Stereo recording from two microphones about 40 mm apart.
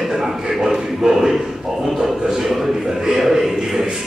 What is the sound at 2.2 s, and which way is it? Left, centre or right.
Speech, centre.